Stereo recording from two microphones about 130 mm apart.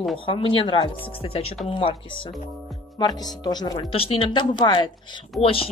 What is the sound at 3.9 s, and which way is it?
Speech, 45° left (ahead or behind).